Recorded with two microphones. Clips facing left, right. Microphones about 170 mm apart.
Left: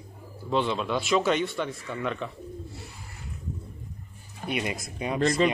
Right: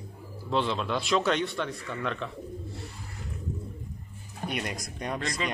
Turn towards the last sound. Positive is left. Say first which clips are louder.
# left 10 dB
turn(degrees=30)  # may be behind; listen again after turning